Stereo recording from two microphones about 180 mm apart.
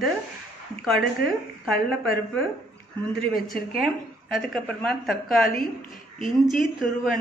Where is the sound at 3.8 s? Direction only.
Centre (ahead or behind).